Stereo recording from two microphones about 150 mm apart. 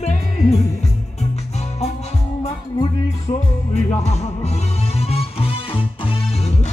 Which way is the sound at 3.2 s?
50° left (ahead or behind).